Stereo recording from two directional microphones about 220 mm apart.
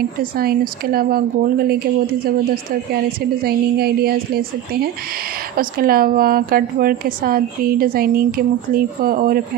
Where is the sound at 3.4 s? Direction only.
45° right (ahead or behind).